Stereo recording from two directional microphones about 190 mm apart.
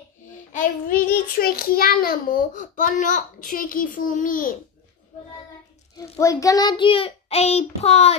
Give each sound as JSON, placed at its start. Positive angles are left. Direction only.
{"t": 0.5, "sound": "child singing", "side_deg": 45}
{"t": 6.1, "sound": "child singing", "side_deg": 15}